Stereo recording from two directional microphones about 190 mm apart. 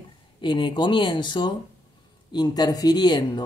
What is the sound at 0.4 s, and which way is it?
Speech, 25° left (ahead or behind).